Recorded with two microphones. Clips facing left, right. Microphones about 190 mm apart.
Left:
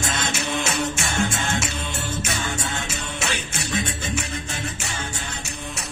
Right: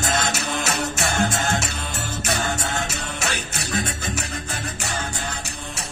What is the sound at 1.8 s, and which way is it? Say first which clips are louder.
Music: left 1 dB; 60° right (ahead or behind).